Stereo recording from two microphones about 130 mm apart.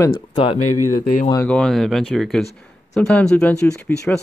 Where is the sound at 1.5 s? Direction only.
5° left (ahead or behind).